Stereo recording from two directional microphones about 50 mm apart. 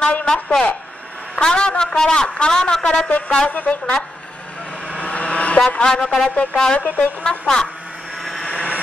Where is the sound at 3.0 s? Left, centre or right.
Left.